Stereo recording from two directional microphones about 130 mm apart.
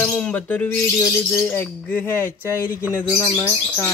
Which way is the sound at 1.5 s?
15° left (ahead or behind).